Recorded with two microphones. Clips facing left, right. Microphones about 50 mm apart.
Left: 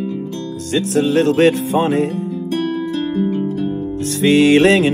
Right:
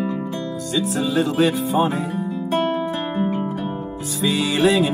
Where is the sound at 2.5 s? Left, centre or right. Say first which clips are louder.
Even; right.